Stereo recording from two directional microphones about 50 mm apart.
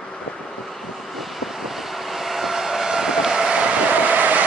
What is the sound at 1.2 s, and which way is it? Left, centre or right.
Vehicle, centre.